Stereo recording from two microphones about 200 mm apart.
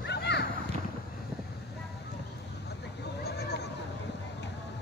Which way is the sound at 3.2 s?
55° left (ahead or behind).